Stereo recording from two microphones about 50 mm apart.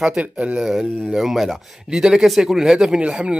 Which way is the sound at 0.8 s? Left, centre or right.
Centre.